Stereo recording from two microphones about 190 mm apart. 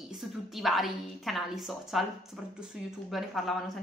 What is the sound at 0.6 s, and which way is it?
A woman's voice, centre (ahead or behind).